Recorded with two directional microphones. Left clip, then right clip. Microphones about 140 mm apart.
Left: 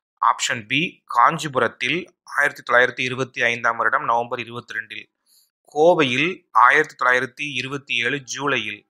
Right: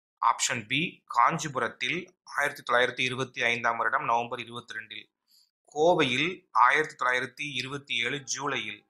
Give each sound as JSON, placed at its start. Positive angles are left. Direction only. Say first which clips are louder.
{"t": 0.2, "sound": "speech", "louder": "left 7 dB", "side_deg": 30}